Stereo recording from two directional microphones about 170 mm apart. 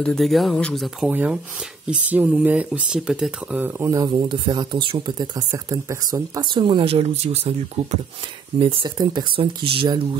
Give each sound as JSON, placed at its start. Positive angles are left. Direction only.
{"t": 0.0, "sound": "speech", "side_deg": 0}
{"t": 1.0, "sound": "speech", "side_deg": -10}
{"t": 8.5, "sound": "speech", "side_deg": -30}